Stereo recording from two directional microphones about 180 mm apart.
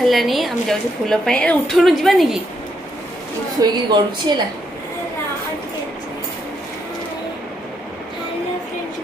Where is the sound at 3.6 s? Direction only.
25° right (ahead or behind).